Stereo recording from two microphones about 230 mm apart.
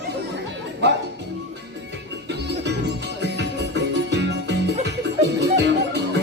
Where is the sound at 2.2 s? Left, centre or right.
Right.